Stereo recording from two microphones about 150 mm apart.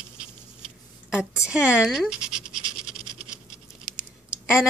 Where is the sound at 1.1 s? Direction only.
5° right (ahead or behind).